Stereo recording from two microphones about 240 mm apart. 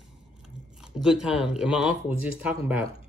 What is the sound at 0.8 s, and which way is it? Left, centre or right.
Speech, centre.